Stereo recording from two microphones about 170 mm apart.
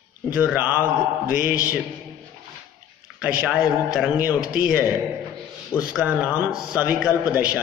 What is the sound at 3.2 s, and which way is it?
A man's voice, 5° right (ahead or behind).